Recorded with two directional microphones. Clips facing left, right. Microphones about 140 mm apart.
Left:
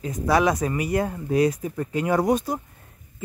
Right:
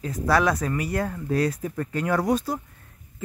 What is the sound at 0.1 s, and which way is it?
Speech, 15° left (ahead or behind).